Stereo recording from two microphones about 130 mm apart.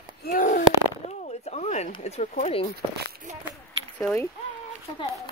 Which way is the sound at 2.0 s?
55° left (ahead or behind).